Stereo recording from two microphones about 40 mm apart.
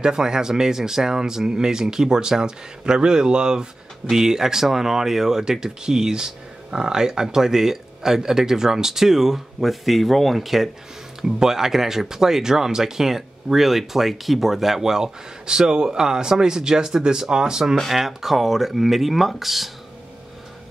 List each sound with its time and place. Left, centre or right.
0.0 s speech: centre
17.7 s speech: centre